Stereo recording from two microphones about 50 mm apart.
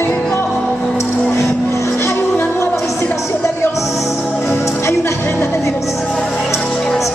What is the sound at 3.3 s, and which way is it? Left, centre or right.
Music, left.